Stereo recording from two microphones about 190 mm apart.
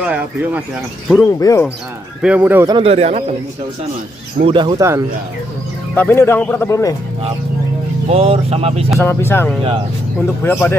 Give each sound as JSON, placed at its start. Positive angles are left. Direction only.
{"t": 0.0, "sound": "speech", "side_deg": -5}
{"t": 1.0, "sound": "speech", "side_deg": 5}
{"t": 1.4, "sound": "speech", "side_deg": 15}
{"t": 2.2, "sound": "speech", "side_deg": -10}
{"t": 2.7, "sound": "speech", "side_deg": -30}
{"t": 4.5, "sound": "speech", "side_deg": -25}
{"t": 5.9, "sound": "speech", "side_deg": 10}
{"t": 8.1, "sound": "speech", "side_deg": -30}
{"t": 9.0, "sound": "speech", "side_deg": 10}